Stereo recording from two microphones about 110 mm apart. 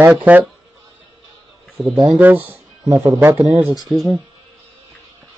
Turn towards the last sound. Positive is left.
turn(degrees=0)  # may be behind; listen again after turning